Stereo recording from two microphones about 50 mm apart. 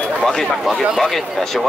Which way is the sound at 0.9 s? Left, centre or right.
Centre.